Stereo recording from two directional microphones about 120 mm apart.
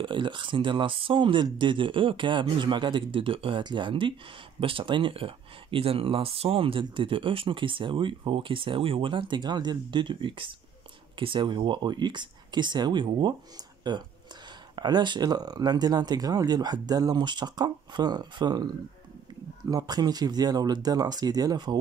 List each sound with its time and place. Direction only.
0.0 s speech: 45° right (ahead or behind)